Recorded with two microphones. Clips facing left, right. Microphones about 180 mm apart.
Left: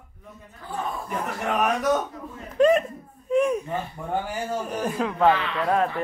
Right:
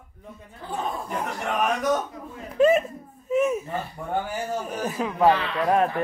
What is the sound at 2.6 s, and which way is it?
Speech, 5° right (ahead or behind).